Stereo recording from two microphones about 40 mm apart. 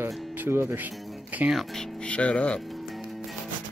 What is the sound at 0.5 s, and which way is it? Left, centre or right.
Speech, right.